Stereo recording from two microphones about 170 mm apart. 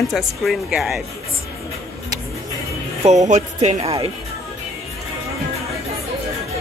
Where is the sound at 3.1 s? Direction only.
45° right (ahead or behind).